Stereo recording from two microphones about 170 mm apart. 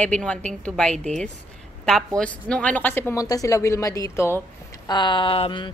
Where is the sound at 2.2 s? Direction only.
5° left (ahead or behind); by 5.7 s 30° left (ahead or behind).